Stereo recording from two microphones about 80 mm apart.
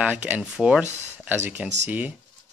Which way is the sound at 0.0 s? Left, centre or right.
Right.